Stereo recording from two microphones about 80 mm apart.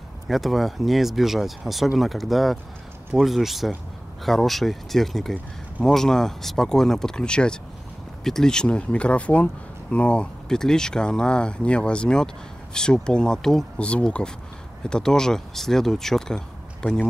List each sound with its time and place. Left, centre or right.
0.3 s speech: centre